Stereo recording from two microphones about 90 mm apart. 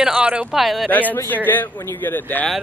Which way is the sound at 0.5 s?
Centre (ahead or behind).